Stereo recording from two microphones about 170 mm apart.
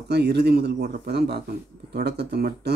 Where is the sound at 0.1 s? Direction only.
75° right (ahead or behind).